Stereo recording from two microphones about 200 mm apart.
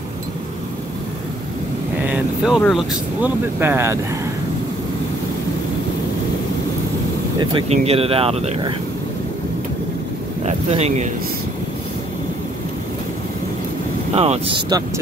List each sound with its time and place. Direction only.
2.0 s speech: 5° right (ahead or behind)
3.5 s speech: 10° right (ahead or behind)
7.3 s speech: 30° right (ahead or behind)
10.4 s speech: 35° right (ahead or behind)
14.1 s speech: 30° right (ahead or behind)